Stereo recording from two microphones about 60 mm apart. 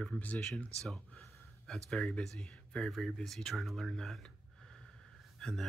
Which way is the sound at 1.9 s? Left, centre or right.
Centre.